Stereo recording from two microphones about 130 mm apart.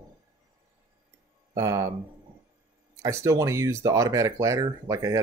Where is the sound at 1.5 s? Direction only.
25° right (ahead or behind).